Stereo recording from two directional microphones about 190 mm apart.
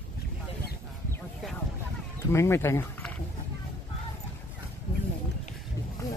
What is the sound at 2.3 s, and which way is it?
Speech, 15° left (ahead or behind).